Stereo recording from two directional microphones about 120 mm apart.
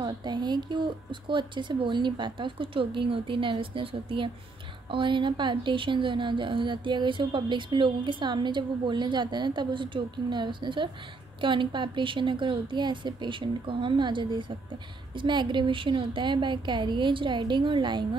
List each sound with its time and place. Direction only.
0.0 s a woman's voice: 35° right (ahead or behind)